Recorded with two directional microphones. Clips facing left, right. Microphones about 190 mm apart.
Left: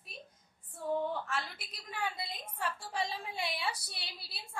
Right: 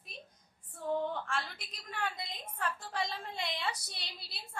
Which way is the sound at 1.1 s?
5° left (ahead or behind).